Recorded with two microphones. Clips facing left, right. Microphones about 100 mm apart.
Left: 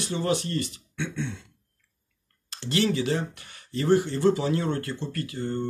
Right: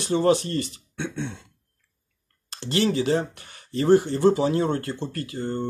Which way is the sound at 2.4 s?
30° right (ahead or behind).